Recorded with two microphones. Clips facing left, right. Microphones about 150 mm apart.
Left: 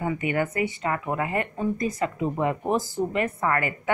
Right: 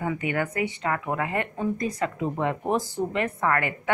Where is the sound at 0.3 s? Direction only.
5° left (ahead or behind).